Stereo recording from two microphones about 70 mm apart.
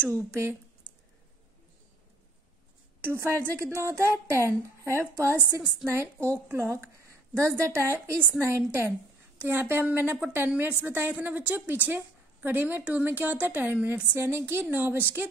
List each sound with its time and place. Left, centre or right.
0.1 s a woman's voice: right
3.0 s a woman's voice: right
5.3 s a woman's voice: right
5.9 s a woman's voice: right
14.1 s a woman's voice: right